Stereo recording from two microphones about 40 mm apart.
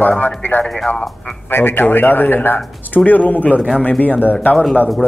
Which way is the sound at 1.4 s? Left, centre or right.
Left.